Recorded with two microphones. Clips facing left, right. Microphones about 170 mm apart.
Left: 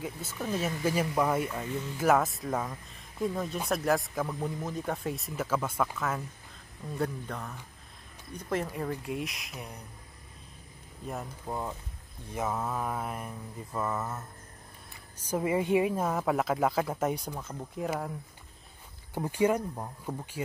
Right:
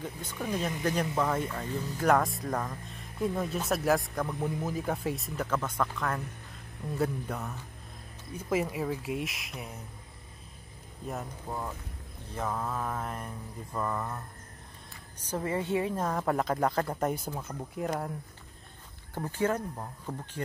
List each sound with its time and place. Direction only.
0.0 s speech: 5° left (ahead or behind)
7.0 s speech: 5° right (ahead or behind)
11.1 s speech: centre (ahead or behind)
15.2 s speech: 10° left (ahead or behind); by 17.8 s 10° right (ahead or behind)
17.8 s speech: 5° left (ahead or behind)
19.1 s speech: 15° left (ahead or behind)